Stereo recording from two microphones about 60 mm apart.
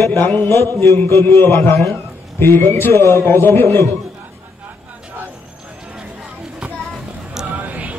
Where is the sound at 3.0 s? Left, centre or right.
Left.